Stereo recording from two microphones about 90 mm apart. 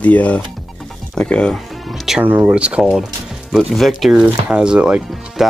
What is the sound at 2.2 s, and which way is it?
Speech, 20° right (ahead or behind).